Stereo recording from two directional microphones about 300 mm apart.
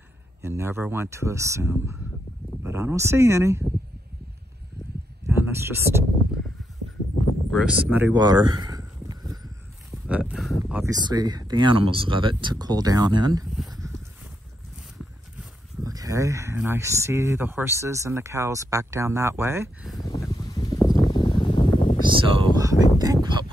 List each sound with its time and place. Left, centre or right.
0.4 s speech: centre
5.3 s speech: centre
7.5 s speech: centre
15.8 s speech: centre
20.2 s a sound: centre
22.0 s a sound: centre
22.9 s speech: centre